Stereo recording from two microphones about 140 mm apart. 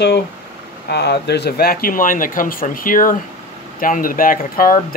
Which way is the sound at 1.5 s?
90° left.